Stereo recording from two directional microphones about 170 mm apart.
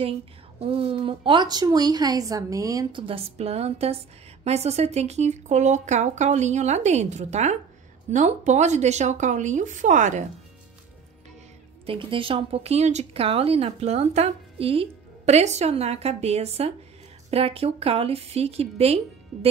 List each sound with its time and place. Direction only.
0.0 s speech: 35° right (ahead or behind)
11.8 s speech: 30° right (ahead or behind)